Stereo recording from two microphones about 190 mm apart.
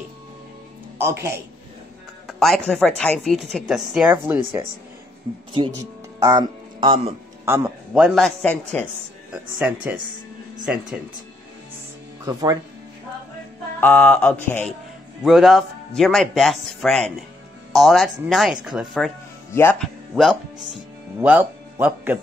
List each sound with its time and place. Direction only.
0.9 s speech: 15° right (ahead or behind)
2.2 s a sound: centre (ahead or behind)
2.7 s a woman's voice: 5° left (ahead or behind)
5.3 s speech: 25° right (ahead or behind)
7.4 s a woman's voice: 10° right (ahead or behind)
9.6 s a woman's voice: 10° right (ahead or behind)
12.3 s speech: 20° right (ahead or behind)
13.7 s a woman's voice: 5° left (ahead or behind)
19.5 s speech: 15° left (ahead or behind)
19.8 s speech: centre (ahead or behind)